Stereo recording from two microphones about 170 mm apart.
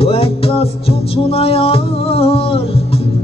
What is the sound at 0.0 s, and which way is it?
Music, 35° left (ahead or behind).